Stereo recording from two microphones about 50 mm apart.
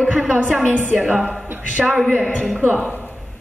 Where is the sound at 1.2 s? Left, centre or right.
Centre.